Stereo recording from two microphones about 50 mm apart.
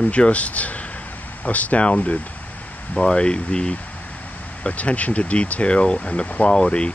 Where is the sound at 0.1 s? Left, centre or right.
Left.